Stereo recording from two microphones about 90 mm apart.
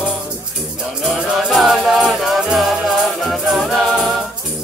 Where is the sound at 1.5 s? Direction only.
Centre (ahead or behind).